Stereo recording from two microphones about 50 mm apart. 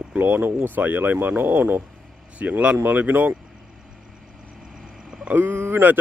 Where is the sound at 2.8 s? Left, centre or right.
Right.